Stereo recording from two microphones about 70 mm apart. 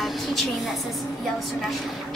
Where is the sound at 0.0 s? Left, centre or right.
Centre.